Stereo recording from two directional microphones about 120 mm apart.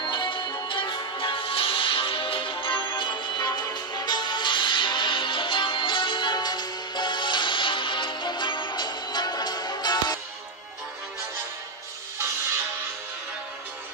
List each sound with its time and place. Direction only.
0.0 s music: 40° left (ahead or behind)